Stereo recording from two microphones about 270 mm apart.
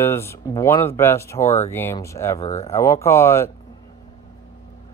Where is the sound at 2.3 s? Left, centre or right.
Left.